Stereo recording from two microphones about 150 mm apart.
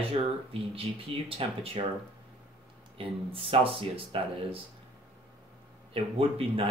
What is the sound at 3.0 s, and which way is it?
Speech, 35° right (ahead or behind).